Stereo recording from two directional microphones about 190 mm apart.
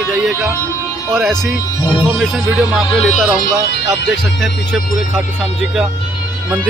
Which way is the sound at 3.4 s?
60° left (ahead or behind).